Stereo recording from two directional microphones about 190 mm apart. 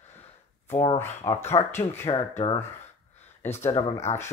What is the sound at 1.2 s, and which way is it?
Speech, 15° left (ahead or behind).